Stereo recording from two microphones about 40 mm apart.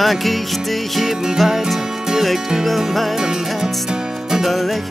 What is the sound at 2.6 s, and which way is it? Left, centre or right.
Music, centre.